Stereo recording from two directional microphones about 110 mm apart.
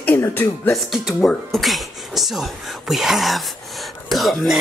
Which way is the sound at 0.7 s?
Centre (ahead or behind).